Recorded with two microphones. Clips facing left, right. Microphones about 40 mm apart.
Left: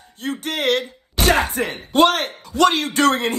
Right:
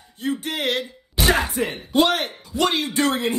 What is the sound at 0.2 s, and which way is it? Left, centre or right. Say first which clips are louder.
Speech: left 1 dB; left.